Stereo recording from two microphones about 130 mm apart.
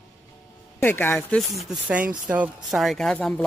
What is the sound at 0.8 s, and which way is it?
Speech, 15° left (ahead or behind).